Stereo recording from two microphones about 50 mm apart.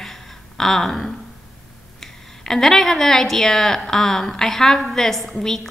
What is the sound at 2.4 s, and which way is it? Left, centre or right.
A woman's voice, centre.